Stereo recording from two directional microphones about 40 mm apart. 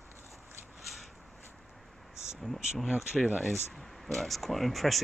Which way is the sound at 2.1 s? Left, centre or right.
Centre.